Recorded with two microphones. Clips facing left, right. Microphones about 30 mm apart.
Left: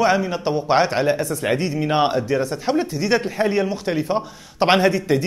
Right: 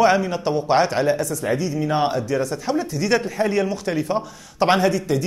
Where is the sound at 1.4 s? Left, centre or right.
Left.